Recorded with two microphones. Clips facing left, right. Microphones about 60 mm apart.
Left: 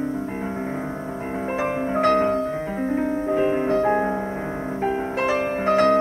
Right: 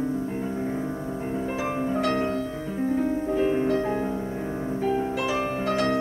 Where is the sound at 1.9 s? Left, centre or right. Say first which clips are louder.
Left 8 dB; left.